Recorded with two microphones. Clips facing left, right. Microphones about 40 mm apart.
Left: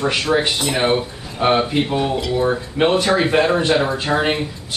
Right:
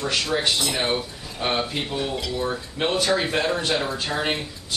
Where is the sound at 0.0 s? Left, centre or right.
Left.